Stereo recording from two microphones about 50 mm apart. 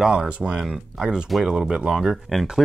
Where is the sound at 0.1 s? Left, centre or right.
Right.